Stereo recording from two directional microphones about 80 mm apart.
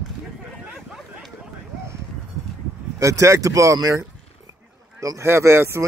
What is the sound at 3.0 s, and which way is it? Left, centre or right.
Speech, right.